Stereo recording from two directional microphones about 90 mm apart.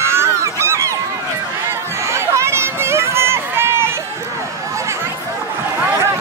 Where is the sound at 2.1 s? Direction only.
30° right (ahead or behind).